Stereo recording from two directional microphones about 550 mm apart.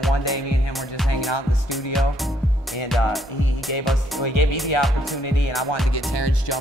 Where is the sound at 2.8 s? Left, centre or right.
Centre.